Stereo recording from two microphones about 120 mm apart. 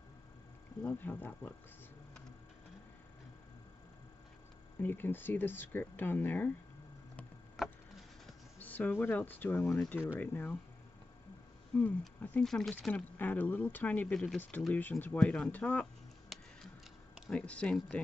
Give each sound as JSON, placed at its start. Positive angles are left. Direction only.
{"t": 0.8, "sound": "speech", "side_deg": 15}
{"t": 4.7, "sound": "speech", "side_deg": 15}
{"t": 7.6, "sound": "a sound", "side_deg": 0}
{"t": 8.5, "sound": "speech", "side_deg": 15}
{"t": 11.7, "sound": "speech", "side_deg": 10}